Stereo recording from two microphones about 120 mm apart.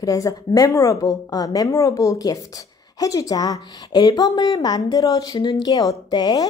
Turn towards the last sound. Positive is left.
turn(degrees=35)  # may be behind; listen again after turning